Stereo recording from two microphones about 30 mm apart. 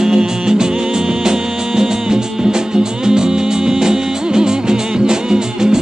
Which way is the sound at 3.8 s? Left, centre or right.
Centre.